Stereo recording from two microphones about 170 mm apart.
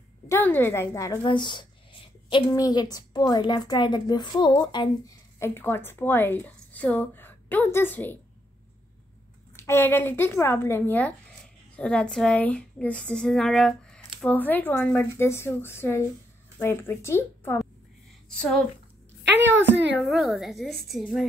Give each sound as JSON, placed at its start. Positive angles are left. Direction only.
{"t": 0.3, "sound": "a woman's voice", "side_deg": 10}
{"t": 9.6, "sound": "speech", "side_deg": 15}
{"t": 20.0, "sound": "a woman's voice", "side_deg": 0}